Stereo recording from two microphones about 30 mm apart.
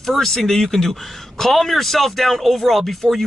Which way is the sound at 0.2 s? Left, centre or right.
Centre.